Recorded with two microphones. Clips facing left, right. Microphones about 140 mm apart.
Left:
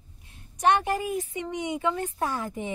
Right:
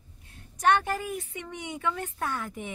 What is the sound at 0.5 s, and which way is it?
Speech, 20° left (ahead or behind).